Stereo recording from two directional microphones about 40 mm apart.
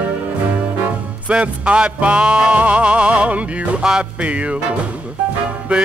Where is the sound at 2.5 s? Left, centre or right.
Right.